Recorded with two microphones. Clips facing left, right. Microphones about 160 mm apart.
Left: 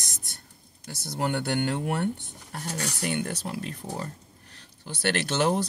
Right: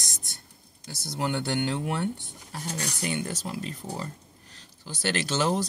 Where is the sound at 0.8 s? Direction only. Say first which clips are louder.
Left 1 dB; 50° left (ahead or behind).